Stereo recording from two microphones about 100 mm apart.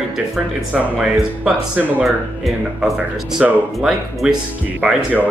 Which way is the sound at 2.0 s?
Centre (ahead or behind).